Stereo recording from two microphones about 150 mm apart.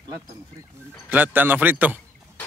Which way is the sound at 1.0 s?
10° right (ahead or behind).